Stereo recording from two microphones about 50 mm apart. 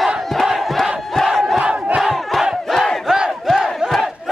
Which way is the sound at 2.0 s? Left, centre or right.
Centre.